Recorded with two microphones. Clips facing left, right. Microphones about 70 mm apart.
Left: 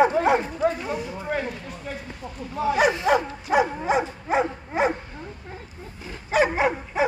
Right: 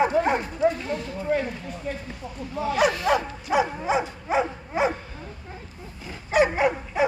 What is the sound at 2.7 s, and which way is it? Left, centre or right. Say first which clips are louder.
Bow-wow: left 1 dB; left.